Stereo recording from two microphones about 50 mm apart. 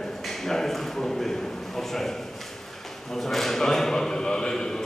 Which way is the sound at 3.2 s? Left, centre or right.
Centre.